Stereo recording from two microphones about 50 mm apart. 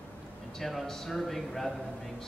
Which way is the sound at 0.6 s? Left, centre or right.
Centre.